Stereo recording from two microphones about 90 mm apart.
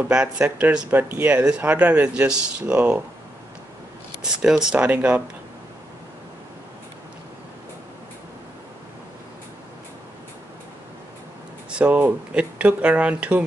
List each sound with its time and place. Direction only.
0.1 s speech: 10° right (ahead or behind)
4.2 s speech: 5° right (ahead or behind)
11.7 s speech: 15° right (ahead or behind)